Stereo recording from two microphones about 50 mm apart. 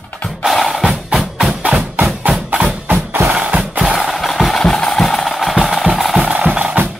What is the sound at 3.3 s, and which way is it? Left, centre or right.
Music, right.